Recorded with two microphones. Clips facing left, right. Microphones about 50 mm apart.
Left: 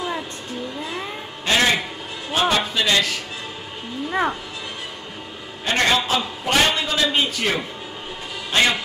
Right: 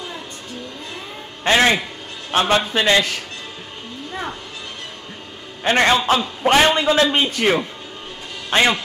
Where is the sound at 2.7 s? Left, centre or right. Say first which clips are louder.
Right 4 dB; right.